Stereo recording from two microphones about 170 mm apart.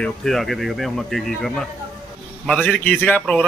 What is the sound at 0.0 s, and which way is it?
A man's voice, centre (ahead or behind).